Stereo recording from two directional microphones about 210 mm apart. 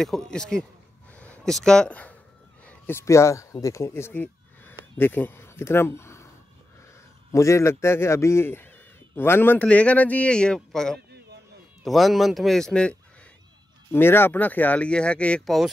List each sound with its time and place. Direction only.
0.3 s speech: 5° left (ahead or behind)
7.3 s a man's voice: 15° left (ahead or behind)
11.1 s a sound: 50° right (ahead or behind)
11.8 s speech: centre (ahead or behind)
13.9 s a man's voice: 10° left (ahead or behind)